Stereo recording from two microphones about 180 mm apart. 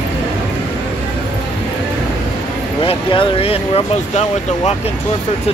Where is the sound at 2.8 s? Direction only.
30° left (ahead or behind).